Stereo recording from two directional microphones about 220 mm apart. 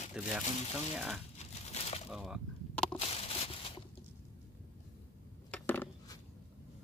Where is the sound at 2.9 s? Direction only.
25° left (ahead or behind).